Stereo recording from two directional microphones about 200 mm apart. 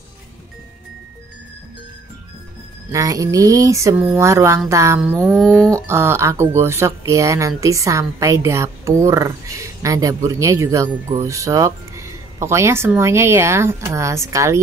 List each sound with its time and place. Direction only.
2.9 s speech: 15° right (ahead or behind)
5.3 s a sound: centre (ahead or behind)
5.9 s speech: 15° right (ahead or behind)